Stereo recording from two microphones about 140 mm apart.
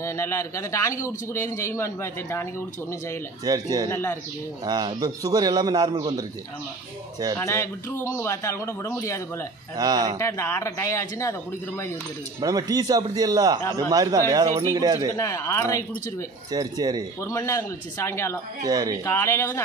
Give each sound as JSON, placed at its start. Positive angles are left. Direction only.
{"t": 0.0, "sound": "a man's voice", "side_deg": 20}
{"t": 3.5, "sound": "a man's voice", "side_deg": -25}
{"t": 3.9, "sound": "speech", "side_deg": 20}
{"t": 4.6, "sound": "a man's voice", "side_deg": -30}
{"t": 7.3, "sound": "a man's voice", "side_deg": 20}
{"t": 9.8, "sound": "a man's voice", "side_deg": -30}
{"t": 10.1, "sound": "a man's voice", "side_deg": 20}
{"t": 12.4, "sound": "a man's voice", "side_deg": -25}
{"t": 15.1, "sound": "a man's voice", "side_deg": 25}
{"t": 16.5, "sound": "a man's voice", "side_deg": -30}
{"t": 17.2, "sound": "a man's voice", "side_deg": 20}
{"t": 18.7, "sound": "a man's voice", "side_deg": -25}
{"t": 19.0, "sound": "a man's voice", "side_deg": 20}